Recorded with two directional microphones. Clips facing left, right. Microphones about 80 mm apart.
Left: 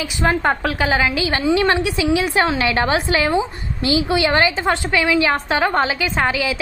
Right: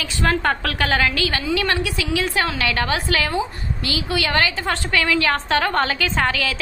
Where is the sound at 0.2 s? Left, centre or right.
Centre.